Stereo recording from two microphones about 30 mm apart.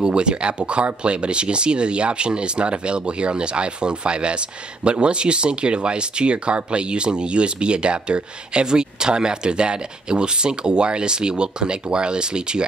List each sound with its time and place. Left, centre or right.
0.0 s speech: right